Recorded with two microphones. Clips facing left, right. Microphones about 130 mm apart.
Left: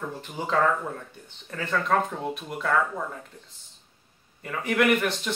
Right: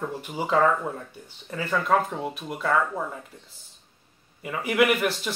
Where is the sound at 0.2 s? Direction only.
10° right (ahead or behind).